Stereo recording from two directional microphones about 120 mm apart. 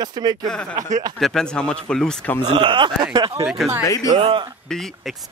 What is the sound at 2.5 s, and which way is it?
Speech, 45° right (ahead or behind).